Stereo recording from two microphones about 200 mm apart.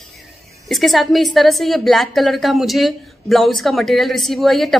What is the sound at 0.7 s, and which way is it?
A woman's voice, centre (ahead or behind).